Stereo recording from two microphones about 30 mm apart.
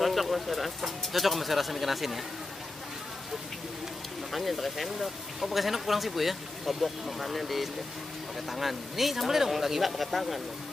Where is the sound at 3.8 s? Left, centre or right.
Centre.